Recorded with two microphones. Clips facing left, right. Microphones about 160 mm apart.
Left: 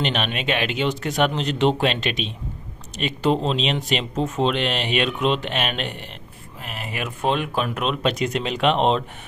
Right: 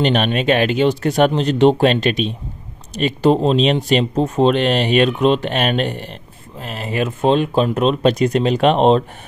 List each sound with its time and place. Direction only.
0.0 s speech: 40° right (ahead or behind)
6.6 s speech: 30° right (ahead or behind)